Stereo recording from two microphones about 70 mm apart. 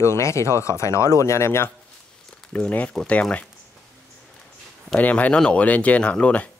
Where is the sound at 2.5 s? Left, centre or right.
Centre.